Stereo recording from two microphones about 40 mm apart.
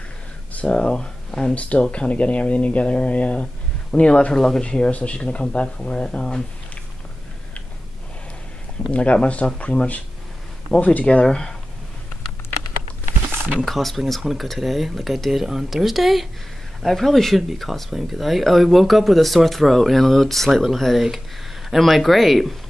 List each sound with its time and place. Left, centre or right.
0.5 s a sound: left
0.8 s speech: centre
1.5 s speech: left
4.4 s speech: centre
4.6 s speech: left
8.9 s speech: left
10.8 s speech: left
11.2 s speech: centre
13.7 s speech: centre